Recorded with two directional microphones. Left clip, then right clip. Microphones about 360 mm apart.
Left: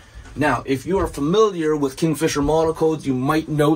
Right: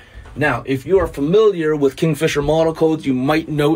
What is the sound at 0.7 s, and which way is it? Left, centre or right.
Speech, centre.